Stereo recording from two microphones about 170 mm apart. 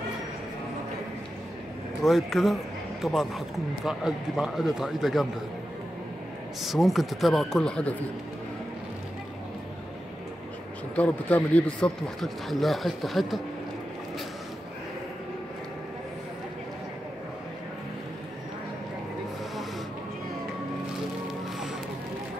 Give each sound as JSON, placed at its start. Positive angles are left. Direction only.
{"t": 2.0, "sound": "speech", "side_deg": 0}
{"t": 6.6, "sound": "speech", "side_deg": 0}
{"t": 11.0, "sound": "speech", "side_deg": 10}